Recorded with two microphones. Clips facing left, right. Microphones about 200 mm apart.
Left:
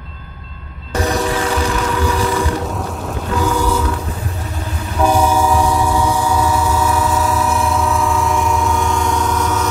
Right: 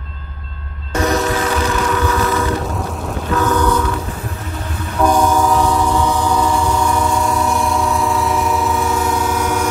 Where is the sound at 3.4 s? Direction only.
10° left (ahead or behind).